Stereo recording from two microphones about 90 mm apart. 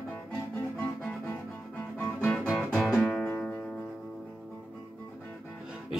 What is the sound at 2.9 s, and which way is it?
Music, 15° left (ahead or behind).